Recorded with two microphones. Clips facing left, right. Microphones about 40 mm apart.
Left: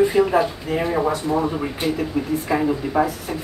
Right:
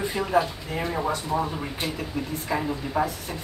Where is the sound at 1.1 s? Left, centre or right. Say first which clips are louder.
Left 5 dB; centre.